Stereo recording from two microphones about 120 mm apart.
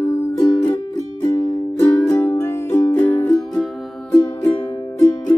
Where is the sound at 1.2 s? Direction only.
40° left (ahead or behind).